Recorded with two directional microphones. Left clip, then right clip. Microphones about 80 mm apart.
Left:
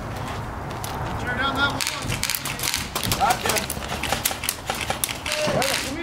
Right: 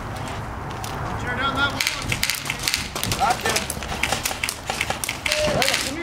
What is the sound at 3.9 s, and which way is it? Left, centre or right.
Typewriter, centre.